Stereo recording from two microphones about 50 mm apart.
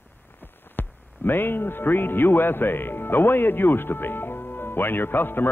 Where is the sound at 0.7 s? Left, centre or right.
Left.